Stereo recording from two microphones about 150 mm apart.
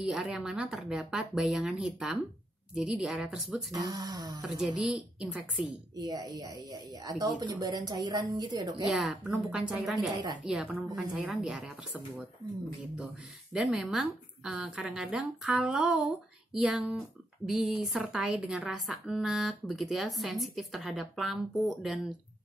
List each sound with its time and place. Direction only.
0.0 s a woman's voice: centre (ahead or behind)
3.7 s speech: 25° right (ahead or behind)
4.4 s a woman's voice: 5° right (ahead or behind)
5.9 s speech: 25° right (ahead or behind)
8.8 s a woman's voice: centre (ahead or behind)
12.9 s a woman's voice: 5° right (ahead or behind)